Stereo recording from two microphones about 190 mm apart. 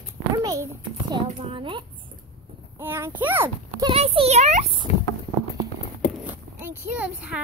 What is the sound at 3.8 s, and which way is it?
Speech, 30° right (ahead or behind).